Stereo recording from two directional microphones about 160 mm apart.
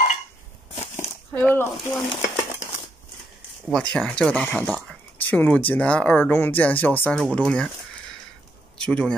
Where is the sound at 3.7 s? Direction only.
5° left (ahead or behind).